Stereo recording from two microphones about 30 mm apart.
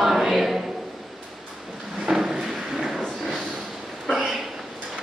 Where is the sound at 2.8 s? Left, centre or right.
Centre.